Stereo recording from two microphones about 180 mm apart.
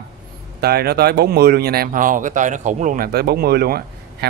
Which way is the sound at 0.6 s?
60° right (ahead or behind).